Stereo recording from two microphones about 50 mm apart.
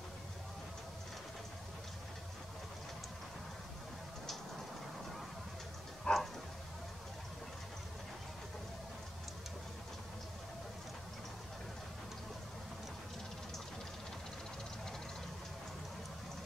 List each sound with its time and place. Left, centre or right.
6.1 s dog: centre